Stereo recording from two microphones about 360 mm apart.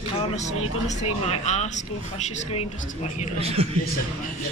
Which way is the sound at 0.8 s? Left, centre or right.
Centre.